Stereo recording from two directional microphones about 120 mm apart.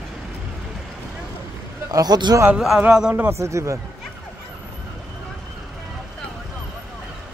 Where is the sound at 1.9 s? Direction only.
35° right (ahead or behind).